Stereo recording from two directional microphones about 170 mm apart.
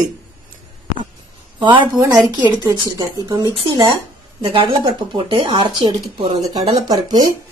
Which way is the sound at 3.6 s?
25° right (ahead or behind).